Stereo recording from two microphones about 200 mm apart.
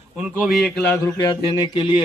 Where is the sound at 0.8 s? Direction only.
10° left (ahead or behind).